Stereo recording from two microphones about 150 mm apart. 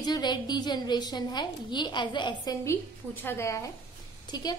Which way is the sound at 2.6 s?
15° left (ahead or behind).